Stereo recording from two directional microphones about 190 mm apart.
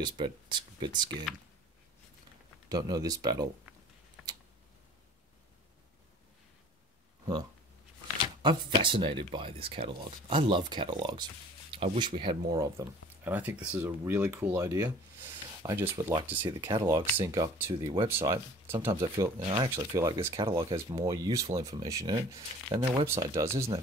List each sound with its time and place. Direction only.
0.0 s speech: 25° right (ahead or behind)
2.7 s speech: 20° right (ahead or behind)
8.4 s speech: 25° right (ahead or behind)